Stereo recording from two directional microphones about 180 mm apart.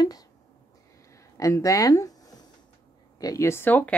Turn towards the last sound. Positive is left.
turn(degrees=10)  # may be behind; listen again after turning